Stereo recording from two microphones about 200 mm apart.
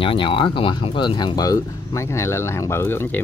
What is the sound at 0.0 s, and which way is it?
Speech, 25° left (ahead or behind).